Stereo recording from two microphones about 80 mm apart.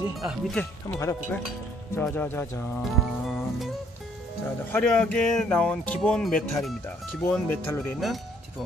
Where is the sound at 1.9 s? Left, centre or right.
Left.